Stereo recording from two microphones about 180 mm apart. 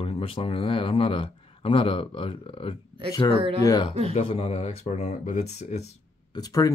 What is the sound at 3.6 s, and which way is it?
Speech, 20° left (ahead or behind).